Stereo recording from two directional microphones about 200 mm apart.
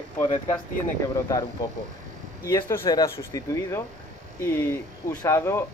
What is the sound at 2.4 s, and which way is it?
Speech, 15° left (ahead or behind).